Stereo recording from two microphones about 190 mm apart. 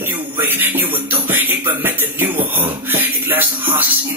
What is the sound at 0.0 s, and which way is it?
Music, 10° right (ahead or behind).